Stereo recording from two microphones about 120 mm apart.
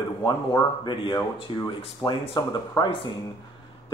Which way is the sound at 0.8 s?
40° left (ahead or behind).